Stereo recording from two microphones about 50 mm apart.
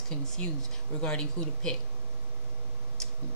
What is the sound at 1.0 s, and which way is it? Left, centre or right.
Speech, centre.